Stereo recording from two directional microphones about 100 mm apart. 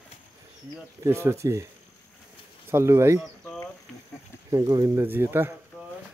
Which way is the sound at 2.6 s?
25° right (ahead or behind).